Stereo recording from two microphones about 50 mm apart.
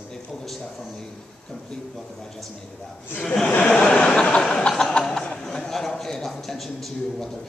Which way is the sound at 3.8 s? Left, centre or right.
Centre.